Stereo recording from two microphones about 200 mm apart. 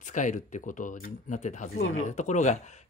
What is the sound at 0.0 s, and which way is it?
Speech, 40° left (ahead or behind).